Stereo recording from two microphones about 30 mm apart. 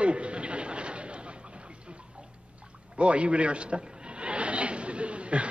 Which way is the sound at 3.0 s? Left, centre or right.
Right.